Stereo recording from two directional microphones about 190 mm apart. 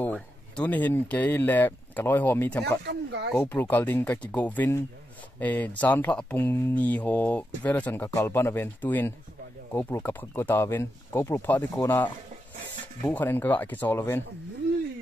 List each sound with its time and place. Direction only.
0.0 s speech: 10° left (ahead or behind)
2.8 s speech: 65° right (ahead or behind)
3.3 s speech: 10° left (ahead or behind)